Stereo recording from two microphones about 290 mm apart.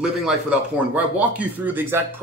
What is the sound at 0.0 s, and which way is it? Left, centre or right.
Speech, centre.